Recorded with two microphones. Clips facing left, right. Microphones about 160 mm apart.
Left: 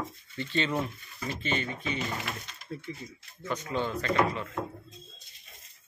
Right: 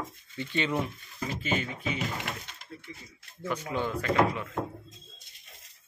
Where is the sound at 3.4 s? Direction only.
10° right (ahead or behind).